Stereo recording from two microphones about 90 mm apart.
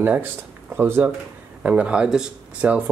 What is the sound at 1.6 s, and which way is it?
Speech, 15° right (ahead or behind).